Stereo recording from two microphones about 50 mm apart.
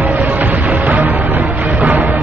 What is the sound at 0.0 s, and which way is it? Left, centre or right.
Music, right.